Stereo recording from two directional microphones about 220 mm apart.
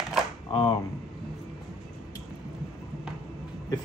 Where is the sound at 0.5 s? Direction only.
25° left (ahead or behind).